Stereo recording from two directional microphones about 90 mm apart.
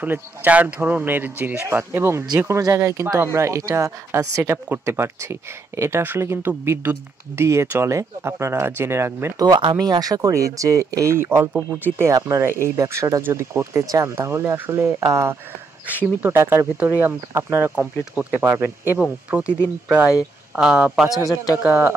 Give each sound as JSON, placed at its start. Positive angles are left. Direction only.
{"t": 0.0, "sound": "speech", "side_deg": -20}
{"t": 9.4, "sound": "speech", "side_deg": -55}
{"t": 12.0, "sound": "speech", "side_deg": -35}
{"t": 19.9, "sound": "a man's voice", "side_deg": -10}
{"t": 21.2, "sound": "a man's voice", "side_deg": 40}
{"t": 21.6, "sound": "speech", "side_deg": -25}